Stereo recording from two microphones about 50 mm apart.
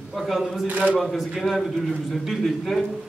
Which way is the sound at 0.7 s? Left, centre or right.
Right.